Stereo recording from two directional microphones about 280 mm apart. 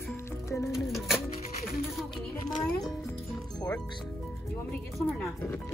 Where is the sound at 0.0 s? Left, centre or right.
Centre.